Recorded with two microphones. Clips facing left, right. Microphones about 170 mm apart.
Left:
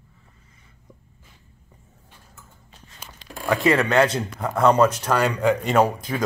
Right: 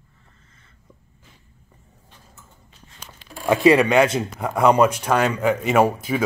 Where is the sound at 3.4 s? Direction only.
20° right (ahead or behind).